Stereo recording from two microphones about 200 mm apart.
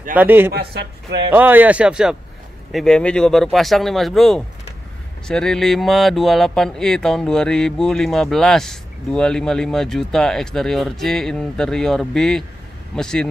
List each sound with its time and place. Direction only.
0.1 s speech: 10° right (ahead or behind)
0.5 s speech: 55° right (ahead or behind)
1.3 s speech: 10° right (ahead or behind)